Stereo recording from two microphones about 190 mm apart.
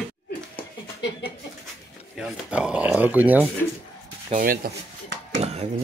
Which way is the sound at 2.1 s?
5° right (ahead or behind).